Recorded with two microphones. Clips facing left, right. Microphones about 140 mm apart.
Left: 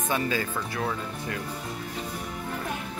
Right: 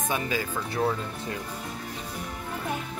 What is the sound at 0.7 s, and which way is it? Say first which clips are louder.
Speech: right 6 dB; 25° right (ahead or behind).